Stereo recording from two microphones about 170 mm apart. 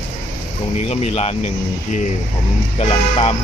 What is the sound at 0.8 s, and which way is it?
Speech, 40° left (ahead or behind).